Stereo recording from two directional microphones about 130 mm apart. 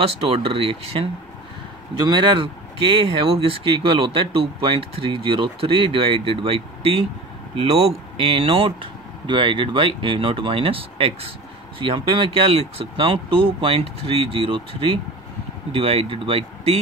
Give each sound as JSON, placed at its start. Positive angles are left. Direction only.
{"t": 0.1, "sound": "speech", "side_deg": -45}
{"t": 8.3, "sound": "speech", "side_deg": -45}